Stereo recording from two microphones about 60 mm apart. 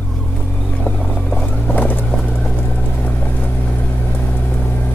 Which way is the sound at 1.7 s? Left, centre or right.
Left.